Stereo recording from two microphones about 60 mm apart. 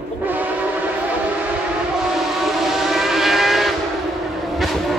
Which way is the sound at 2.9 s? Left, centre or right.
Centre.